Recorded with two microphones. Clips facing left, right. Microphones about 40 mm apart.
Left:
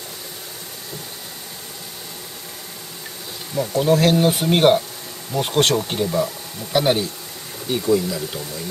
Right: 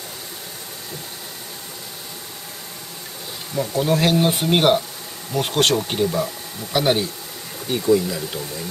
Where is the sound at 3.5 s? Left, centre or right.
Centre.